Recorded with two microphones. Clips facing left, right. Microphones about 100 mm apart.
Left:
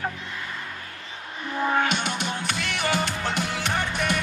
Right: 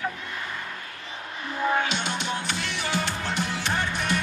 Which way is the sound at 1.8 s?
55° left (ahead or behind).